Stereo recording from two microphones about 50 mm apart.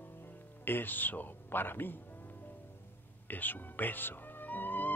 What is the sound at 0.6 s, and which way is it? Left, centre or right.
Speech, left.